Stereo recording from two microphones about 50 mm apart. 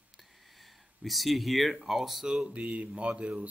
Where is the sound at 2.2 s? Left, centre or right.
Centre.